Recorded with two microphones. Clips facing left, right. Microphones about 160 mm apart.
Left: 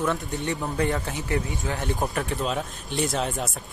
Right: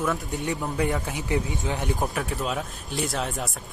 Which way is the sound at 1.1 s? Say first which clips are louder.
Right 1 dB; 15° right (ahead or behind).